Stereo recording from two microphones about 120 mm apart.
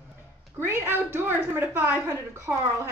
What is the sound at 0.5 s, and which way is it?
A woman's voice, 20° right (ahead or behind).